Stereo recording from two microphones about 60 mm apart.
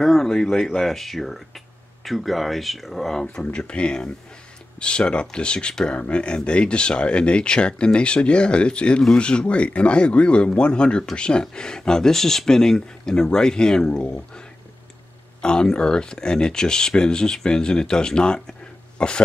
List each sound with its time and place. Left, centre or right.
0.0 s speech: centre
15.4 s speech: centre